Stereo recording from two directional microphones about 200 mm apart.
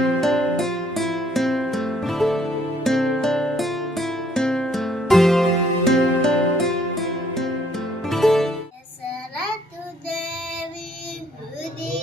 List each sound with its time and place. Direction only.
0.0 s music: centre (ahead or behind)